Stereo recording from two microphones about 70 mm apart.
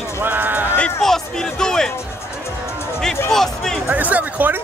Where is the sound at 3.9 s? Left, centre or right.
Right.